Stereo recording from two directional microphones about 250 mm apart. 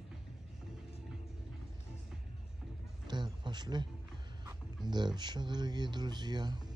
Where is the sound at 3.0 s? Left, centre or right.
Centre.